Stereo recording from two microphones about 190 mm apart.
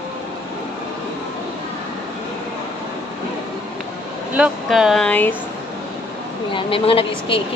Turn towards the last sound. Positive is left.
turn(degrees=30)  # may be behind; listen again after turning